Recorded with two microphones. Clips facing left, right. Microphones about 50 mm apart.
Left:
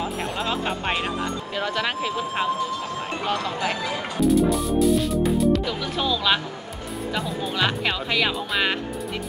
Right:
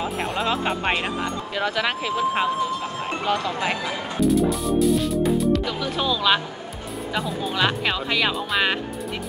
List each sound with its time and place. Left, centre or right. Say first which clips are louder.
0.0 s speech: right 2 dB; centre
1.5 s speech: right 3 dB; centre
3.5 s speech: right 1 dB; right
4.2 s music: left 1 dB; centre
7.2 s speech: right 2 dB; centre